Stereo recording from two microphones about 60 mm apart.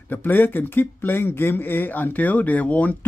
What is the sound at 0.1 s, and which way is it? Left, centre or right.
Speech, left.